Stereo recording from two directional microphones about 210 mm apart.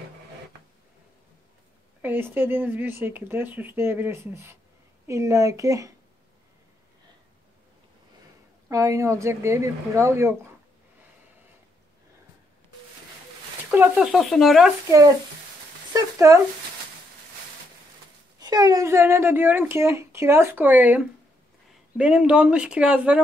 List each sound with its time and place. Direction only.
2.0 s speech: 10° right (ahead or behind)
8.6 s speech: 15° right (ahead or behind)
13.7 s speech: 5° right (ahead or behind)
14.9 s speech: 15° right (ahead or behind)
18.4 s speech: 20° right (ahead or behind)